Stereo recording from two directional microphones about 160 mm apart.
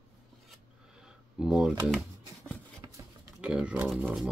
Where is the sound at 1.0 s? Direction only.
5° right (ahead or behind).